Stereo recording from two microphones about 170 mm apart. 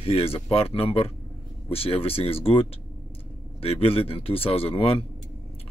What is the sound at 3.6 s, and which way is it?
Speech, 35° left (ahead or behind).